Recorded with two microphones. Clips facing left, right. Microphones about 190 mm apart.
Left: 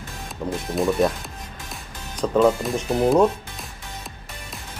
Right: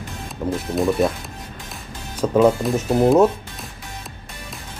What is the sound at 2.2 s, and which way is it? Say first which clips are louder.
Speech: right 2 dB; 10° right (ahead or behind).